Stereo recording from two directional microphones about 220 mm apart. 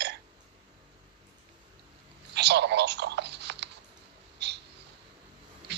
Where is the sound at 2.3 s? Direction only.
50° right (ahead or behind).